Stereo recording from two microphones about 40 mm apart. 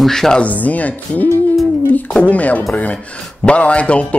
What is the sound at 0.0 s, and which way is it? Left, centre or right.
Speech, centre.